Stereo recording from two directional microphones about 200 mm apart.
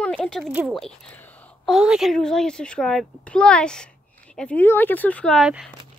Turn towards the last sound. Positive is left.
turn(degrees=0)  # may be behind; listen again after turning